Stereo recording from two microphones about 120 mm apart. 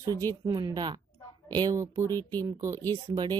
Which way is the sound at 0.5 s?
35° right (ahead or behind).